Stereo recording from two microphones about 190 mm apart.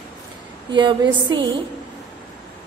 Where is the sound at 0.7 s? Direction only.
25° right (ahead or behind).